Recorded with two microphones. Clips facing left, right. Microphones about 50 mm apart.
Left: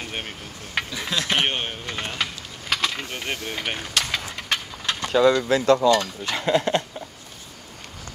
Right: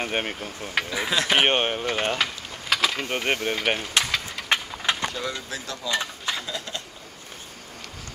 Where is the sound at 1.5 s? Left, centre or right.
Right.